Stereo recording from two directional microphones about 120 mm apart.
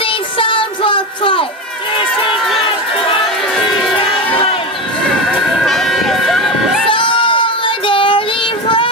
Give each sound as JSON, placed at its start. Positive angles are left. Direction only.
{"t": 0.0, "sound": "child singing", "side_deg": 45}
{"t": 4.0, "sound": "crowd", "side_deg": 45}
{"t": 5.6, "sound": "music", "side_deg": 0}
{"t": 6.9, "sound": "child singing", "side_deg": 45}